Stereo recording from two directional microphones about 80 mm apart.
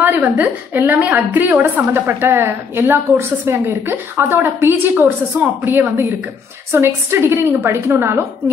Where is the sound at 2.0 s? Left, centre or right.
Right.